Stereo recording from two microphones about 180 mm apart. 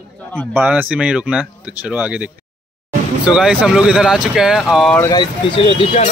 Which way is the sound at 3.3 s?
5° right (ahead or behind).